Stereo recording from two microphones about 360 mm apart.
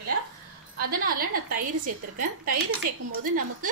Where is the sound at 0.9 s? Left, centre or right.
Right.